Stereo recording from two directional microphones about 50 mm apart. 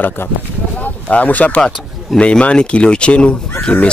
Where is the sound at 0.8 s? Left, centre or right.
Left.